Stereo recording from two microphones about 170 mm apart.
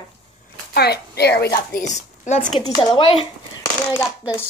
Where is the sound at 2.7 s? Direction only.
30° left (ahead or behind).